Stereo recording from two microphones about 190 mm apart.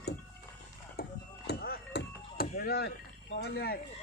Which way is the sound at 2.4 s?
50° left (ahead or behind).